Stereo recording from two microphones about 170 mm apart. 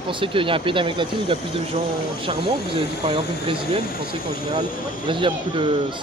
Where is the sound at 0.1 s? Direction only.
30° right (ahead or behind).